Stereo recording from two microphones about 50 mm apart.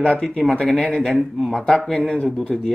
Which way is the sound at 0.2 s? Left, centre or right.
Left.